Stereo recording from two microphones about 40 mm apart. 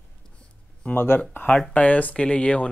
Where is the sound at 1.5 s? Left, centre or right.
Centre.